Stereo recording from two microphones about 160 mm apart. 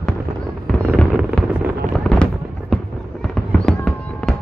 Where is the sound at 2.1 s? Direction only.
5° left (ahead or behind).